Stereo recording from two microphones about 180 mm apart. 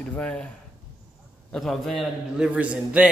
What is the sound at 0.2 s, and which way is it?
Speech, 5° left (ahead or behind).